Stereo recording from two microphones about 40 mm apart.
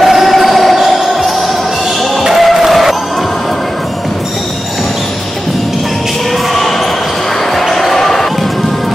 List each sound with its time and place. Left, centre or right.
0.0 s basketball bounce: centre
2.2 s a sound: centre
7.7 s basketball bounce: centre